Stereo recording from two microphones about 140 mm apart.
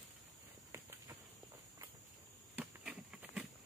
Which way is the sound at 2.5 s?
10° right (ahead or behind).